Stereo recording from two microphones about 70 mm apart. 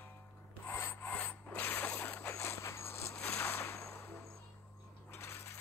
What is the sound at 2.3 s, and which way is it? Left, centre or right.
Dog, left.